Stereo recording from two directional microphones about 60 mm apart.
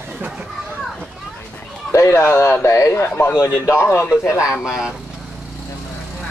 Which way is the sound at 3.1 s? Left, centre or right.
Left.